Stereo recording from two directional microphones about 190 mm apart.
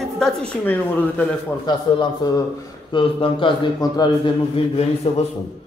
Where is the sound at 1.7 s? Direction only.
20° left (ahead or behind).